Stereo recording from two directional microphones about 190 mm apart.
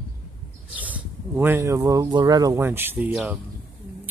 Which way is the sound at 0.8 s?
10° right (ahead or behind).